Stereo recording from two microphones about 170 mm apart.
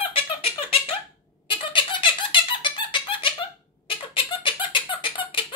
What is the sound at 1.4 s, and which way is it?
Squeak, 30° left (ahead or behind).